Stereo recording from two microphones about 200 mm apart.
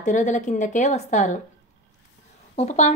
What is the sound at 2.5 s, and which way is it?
Speech, 35° left (ahead or behind).